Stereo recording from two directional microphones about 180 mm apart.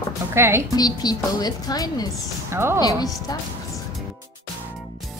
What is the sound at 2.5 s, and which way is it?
Speech, 15° right (ahead or behind).